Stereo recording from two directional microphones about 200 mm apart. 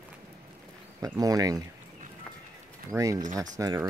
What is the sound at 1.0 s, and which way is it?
Speech, 20° right (ahead or behind).